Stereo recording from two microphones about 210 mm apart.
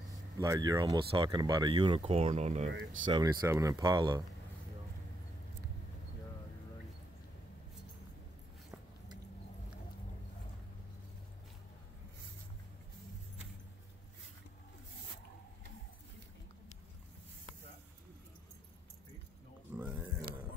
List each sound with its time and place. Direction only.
0.4 s speech: 15° right (ahead or behind); by 2.7 s 30° right (ahead or behind)
2.7 s speech: 60° right (ahead or behind)
3.1 s speech: 15° right (ahead or behind)
19.8 s pig: 5° right (ahead or behind)